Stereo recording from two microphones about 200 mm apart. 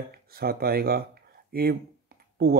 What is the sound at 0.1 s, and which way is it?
Speech, 50° right (ahead or behind).